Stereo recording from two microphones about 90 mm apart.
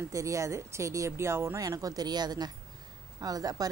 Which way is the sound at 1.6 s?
40° right (ahead or behind).